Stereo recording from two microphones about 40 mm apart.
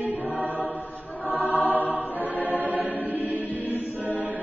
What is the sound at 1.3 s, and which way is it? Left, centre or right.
Choir, right.